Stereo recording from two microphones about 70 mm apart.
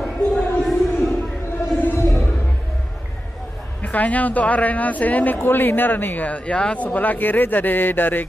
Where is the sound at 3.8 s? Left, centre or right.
Left.